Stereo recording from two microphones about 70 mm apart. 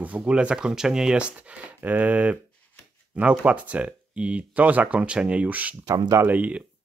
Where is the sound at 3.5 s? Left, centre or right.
Right.